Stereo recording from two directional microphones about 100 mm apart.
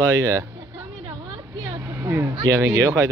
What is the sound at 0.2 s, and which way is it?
Speech, 30° right (ahead or behind).